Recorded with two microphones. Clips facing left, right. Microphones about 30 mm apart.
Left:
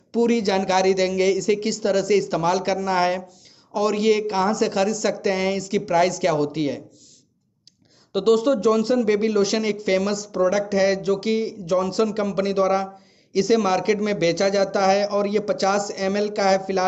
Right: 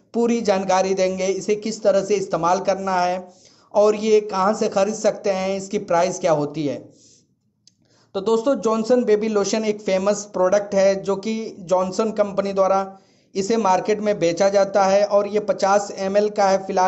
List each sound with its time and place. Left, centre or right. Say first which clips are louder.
0.1 s speech: right 1 dB; left
4.3 s speech: right 1 dB; left
8.1 s speech: left 1 dB; left